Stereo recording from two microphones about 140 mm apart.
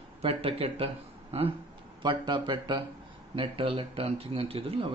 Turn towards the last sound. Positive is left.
turn(degrees=-40)  # may be behind; listen again after turning